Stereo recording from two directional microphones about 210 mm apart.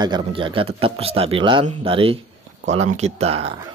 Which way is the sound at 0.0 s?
25° right (ahead or behind).